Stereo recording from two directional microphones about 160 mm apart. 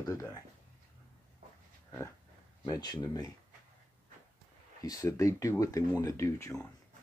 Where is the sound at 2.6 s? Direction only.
25° left (ahead or behind).